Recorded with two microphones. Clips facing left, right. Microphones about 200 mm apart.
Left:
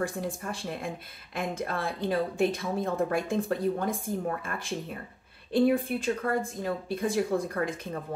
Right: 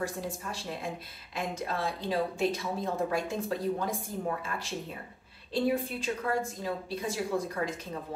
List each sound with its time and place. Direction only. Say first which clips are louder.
0.0 s a woman's voice: left 3 dB; 55° left (ahead or behind)